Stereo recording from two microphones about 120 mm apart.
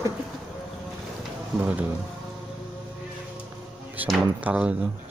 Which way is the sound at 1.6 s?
15° right (ahead or behind).